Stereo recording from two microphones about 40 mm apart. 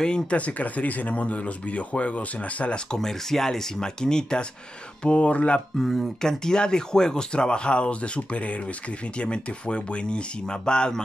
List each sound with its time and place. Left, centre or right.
0.0 s speech: left
0.4 s speech: left
2.9 s speech: centre
5.0 s speech: left
5.8 s speech: centre
6.2 s speech: centre